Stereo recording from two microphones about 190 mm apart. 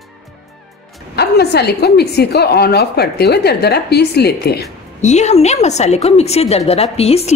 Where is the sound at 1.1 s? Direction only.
60° left (ahead or behind).